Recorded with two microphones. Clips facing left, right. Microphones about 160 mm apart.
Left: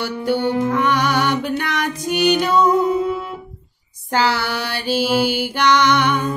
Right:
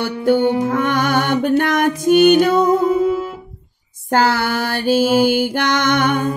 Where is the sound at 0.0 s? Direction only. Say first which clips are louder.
Right 5 dB; 50° right (ahead or behind).